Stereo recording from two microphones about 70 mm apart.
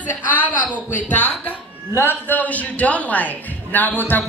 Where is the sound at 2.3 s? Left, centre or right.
Left.